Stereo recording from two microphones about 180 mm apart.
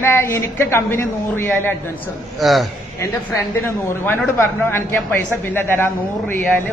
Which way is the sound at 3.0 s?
10° left (ahead or behind).